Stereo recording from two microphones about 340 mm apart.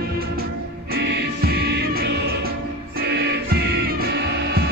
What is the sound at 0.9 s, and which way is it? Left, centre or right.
Music, right.